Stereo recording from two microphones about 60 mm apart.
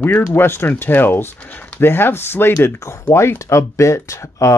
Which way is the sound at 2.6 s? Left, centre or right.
Left.